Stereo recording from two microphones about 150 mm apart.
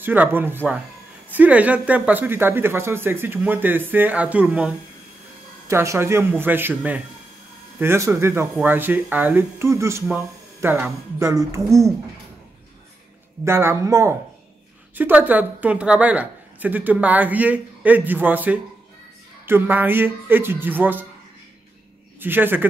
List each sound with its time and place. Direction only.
0.0 s a woman's voice: 15° right (ahead or behind)
13.5 s a woman's voice: 15° right (ahead or behind)
22.2 s a woman's voice: 15° right (ahead or behind)